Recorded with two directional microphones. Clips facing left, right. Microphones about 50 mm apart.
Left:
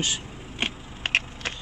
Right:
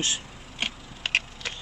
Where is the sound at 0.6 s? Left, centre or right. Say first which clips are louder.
Left 2 dB; left.